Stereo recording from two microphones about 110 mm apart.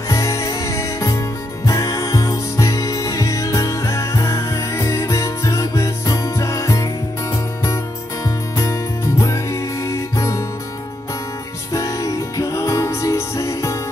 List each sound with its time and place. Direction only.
0.1 s music: 30° left (ahead or behind)
9.2 s music: 30° left (ahead or behind)
11.7 s music: 30° left (ahead or behind)